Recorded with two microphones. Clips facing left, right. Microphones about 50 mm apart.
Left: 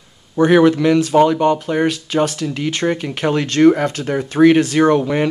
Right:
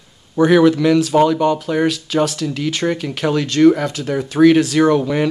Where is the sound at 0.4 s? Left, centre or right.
Left.